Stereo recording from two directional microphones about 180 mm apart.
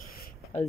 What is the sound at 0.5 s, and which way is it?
Speech, 35° left (ahead or behind).